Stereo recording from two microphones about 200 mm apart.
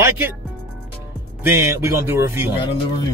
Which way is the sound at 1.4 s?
15° right (ahead or behind).